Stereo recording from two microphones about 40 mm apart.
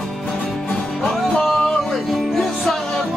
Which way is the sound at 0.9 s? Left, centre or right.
Centre.